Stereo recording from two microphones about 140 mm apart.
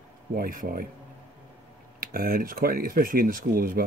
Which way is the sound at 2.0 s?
90° right.